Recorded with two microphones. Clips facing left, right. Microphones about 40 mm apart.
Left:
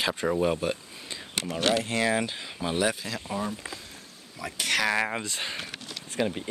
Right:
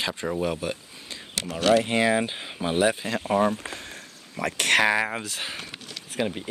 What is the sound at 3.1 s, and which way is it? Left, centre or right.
Speech, right.